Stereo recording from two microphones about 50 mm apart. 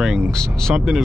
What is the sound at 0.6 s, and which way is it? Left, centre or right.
Speech, centre.